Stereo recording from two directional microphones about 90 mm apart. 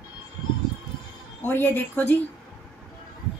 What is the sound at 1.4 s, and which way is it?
Speech, 25° left (ahead or behind).